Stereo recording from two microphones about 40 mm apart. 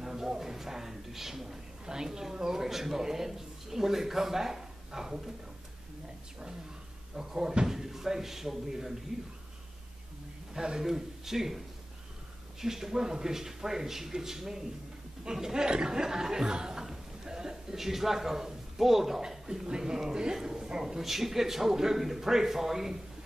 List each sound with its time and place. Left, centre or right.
0.0 s a woman's voice: centre
7.2 s a man's voice: centre
10.5 s a man's voice: centre
21.0 s a man's voice: centre